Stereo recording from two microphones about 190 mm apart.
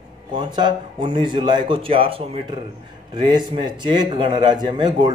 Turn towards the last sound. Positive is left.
turn(degrees=-20)  # may be behind; listen again after turning